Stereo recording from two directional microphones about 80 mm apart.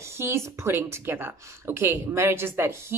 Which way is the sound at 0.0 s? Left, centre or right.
Right.